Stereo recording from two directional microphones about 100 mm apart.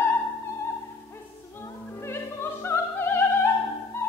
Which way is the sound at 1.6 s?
25° left (ahead or behind).